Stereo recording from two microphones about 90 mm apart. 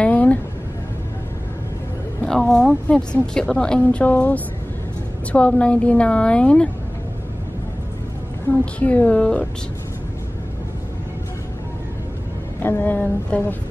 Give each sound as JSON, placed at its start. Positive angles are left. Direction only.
{"t": 0.0, "sound": "a sound", "side_deg": 15}
{"t": 2.2, "sound": "a woman's voice", "side_deg": 5}
{"t": 8.7, "sound": "a woman's voice", "side_deg": 15}
{"t": 12.6, "sound": "speech", "side_deg": 20}